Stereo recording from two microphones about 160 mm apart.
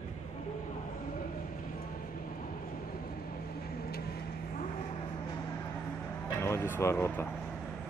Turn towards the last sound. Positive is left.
turn(degrees=15)  # may be behind; listen again after turning